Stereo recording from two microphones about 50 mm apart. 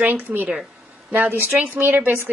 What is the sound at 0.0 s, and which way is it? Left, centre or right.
A woman's voice, right.